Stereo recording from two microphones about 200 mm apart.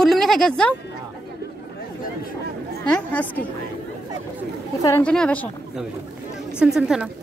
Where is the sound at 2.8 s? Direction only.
5° left (ahead or behind).